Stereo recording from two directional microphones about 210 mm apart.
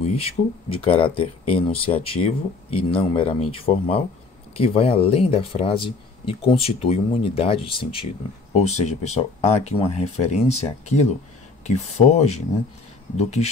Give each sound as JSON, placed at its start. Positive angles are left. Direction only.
{"t": 0.0, "sound": "speech", "side_deg": 30}